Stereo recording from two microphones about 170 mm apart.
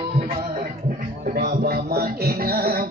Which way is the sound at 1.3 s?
65° right (ahead or behind).